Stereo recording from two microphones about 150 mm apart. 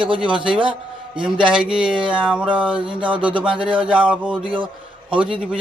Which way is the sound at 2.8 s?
35° right (ahead or behind).